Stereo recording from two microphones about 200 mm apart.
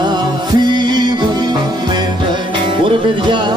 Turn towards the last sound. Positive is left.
turn(degrees=-25)  # may be behind; listen again after turning